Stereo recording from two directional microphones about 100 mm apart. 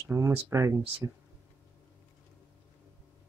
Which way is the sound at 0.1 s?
25° right (ahead or behind).